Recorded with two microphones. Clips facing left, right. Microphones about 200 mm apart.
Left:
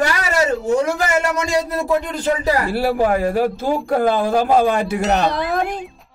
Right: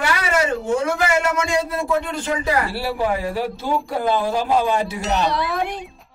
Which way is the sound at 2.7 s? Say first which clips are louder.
Left 5 dB; 50° left (ahead or behind).